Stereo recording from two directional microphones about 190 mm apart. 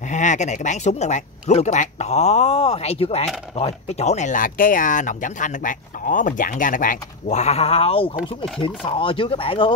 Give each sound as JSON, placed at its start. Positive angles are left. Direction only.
{"t": 0.1, "sound": "speech", "side_deg": 40}